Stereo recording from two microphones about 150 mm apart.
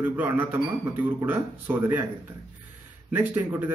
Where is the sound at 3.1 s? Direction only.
15° right (ahead or behind).